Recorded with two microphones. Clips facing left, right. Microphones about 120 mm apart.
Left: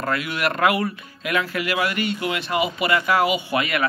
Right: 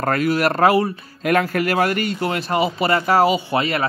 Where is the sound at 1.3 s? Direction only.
45° right (ahead or behind).